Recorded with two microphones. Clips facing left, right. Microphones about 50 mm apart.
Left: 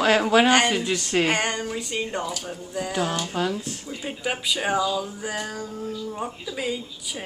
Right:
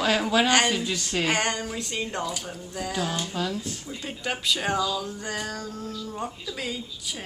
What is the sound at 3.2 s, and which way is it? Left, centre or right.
Speech, left.